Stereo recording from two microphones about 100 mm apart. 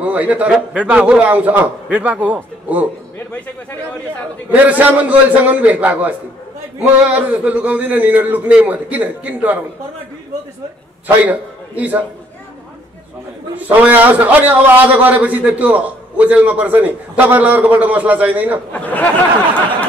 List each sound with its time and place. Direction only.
0.0 s a man's voice: 15° right (ahead or behind)
4.5 s a man's voice: 15° right (ahead or behind)
11.1 s a man's voice: 15° right (ahead or behind)
13.7 s a man's voice: 15° right (ahead or behind)
18.7 s speech: 15° left (ahead or behind)